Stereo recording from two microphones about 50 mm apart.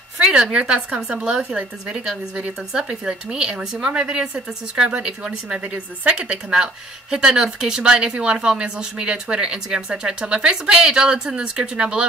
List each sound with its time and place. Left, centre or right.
0.2 s speech: centre
6.3 s speech: centre